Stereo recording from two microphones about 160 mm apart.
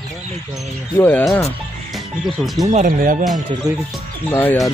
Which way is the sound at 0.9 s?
10° left (ahead or behind).